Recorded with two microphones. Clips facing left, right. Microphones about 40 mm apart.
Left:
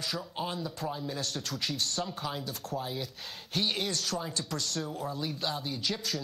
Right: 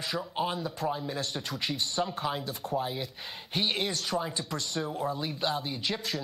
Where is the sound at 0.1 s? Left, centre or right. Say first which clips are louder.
Right 7 dB; centre.